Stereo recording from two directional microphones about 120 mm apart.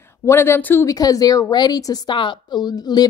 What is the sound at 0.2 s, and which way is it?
Speech, 20° left (ahead or behind).